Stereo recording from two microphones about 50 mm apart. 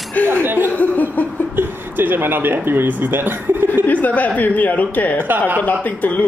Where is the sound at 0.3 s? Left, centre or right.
Right.